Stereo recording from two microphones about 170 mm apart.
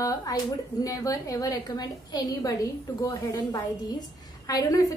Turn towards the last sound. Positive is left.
turn(degrees=20)  # may be behind; listen again after turning